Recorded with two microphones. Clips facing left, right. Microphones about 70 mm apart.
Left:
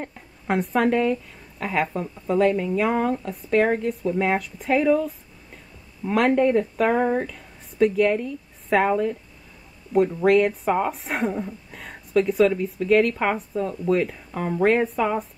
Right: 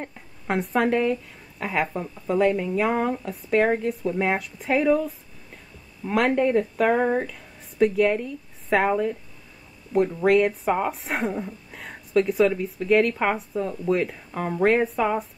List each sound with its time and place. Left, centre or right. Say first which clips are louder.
0.0 s a woman's voice: left 2 dB; centre